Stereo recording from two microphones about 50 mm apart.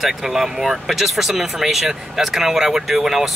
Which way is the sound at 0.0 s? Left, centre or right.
Centre.